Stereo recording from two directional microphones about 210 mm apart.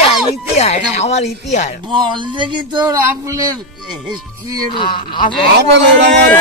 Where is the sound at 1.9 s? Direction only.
20° right (ahead or behind).